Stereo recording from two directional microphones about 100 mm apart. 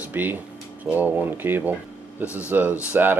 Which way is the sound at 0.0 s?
20° right (ahead or behind).